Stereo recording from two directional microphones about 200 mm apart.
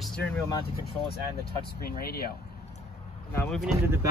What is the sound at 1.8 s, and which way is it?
Speech, 50° left (ahead or behind).